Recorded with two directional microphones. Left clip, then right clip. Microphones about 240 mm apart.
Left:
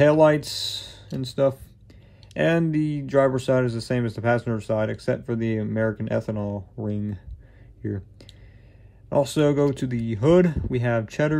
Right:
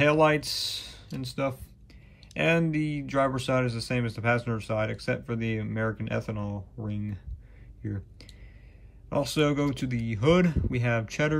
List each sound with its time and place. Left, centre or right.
0.0 s speech: centre
9.1 s speech: centre